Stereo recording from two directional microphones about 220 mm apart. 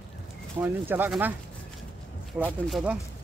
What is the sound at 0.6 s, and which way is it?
Speech, 10° right (ahead or behind).